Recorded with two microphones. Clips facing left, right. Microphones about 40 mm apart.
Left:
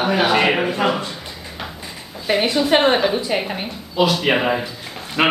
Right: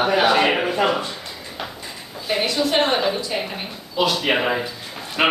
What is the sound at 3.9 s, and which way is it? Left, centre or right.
A man's voice, centre.